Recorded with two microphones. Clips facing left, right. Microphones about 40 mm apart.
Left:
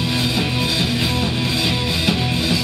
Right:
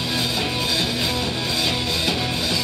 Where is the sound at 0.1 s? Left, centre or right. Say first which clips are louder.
Left 1 dB; centre.